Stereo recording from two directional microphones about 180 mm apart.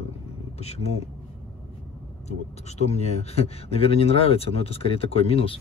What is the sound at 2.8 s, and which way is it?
Speech, 35° left (ahead or behind).